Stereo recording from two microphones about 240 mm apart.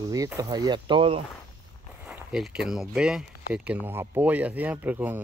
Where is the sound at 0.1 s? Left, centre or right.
Centre.